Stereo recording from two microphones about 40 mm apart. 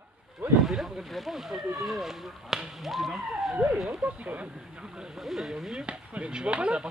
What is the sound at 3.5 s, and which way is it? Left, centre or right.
Speech, right.